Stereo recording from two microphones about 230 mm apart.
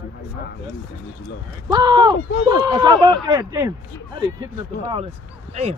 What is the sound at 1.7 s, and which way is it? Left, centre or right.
A man's voice, centre.